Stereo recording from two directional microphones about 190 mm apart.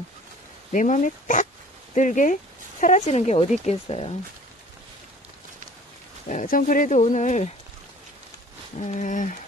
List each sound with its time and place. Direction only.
0.7 s speech: 40° left (ahead or behind)
6.2 s speech: 45° left (ahead or behind)
8.7 s speech: 40° left (ahead or behind)